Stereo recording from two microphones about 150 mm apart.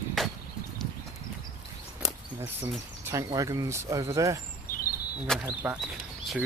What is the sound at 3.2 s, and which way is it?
Speech, 25° right (ahead or behind).